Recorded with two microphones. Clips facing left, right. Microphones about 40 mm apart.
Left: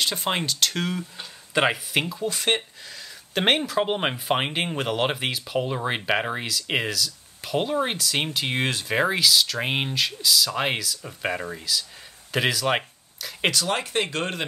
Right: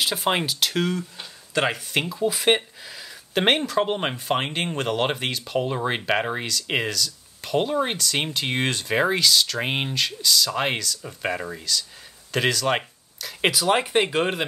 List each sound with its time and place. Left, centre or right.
0.0 s speech: centre
1.5 s speech: centre
1.9 s speech: centre
2.2 s speech: centre
13.5 s speech: centre